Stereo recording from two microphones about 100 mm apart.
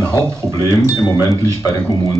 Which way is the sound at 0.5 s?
35° left (ahead or behind).